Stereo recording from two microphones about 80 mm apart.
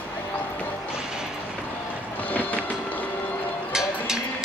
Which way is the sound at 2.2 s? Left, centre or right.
Left.